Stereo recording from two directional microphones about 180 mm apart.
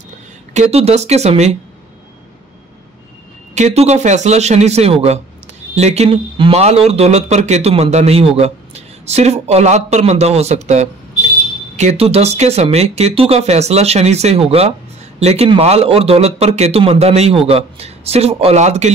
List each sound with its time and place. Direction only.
0.5 s speech: 40° right (ahead or behind)
3.5 s speech: 40° right (ahead or behind)